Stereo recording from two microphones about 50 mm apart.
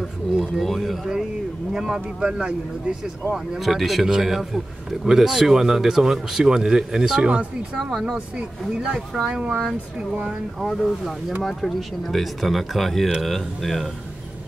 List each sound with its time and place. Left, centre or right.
0.4 s speech: centre
1.7 s speech: centre
3.5 s speech: centre
7.8 s speech: centre
8.4 s speech: centre
10.6 s speech: centre